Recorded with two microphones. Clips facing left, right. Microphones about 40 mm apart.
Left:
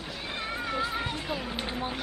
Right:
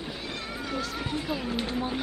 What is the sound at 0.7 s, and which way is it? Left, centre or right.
Speech, left.